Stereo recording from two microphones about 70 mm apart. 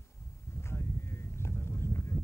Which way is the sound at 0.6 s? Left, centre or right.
Left.